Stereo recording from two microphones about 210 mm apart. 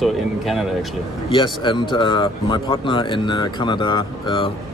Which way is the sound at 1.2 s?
20° left (ahead or behind).